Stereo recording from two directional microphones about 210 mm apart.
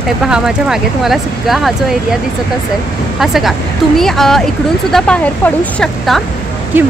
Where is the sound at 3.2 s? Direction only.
Centre (ahead or behind).